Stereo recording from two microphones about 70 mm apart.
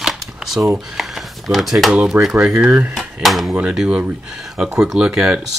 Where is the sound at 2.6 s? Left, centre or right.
Right.